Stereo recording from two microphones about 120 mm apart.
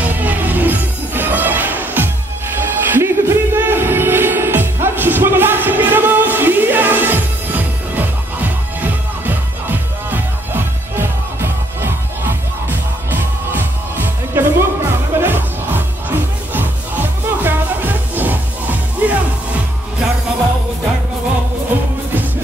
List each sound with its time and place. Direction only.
0.0 s music: 15° right (ahead or behind)
17.4 s music: 15° right (ahead or behind)